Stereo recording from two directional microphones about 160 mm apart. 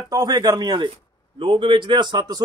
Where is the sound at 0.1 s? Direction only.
25° right (ahead or behind).